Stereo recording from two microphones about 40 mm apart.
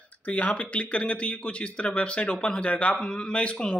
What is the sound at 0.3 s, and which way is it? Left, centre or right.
A man's voice, left.